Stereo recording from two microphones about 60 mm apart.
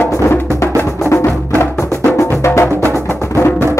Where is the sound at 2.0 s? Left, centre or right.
Left.